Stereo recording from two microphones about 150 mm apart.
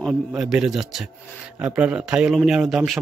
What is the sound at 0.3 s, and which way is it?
A man's voice, 5° right (ahead or behind).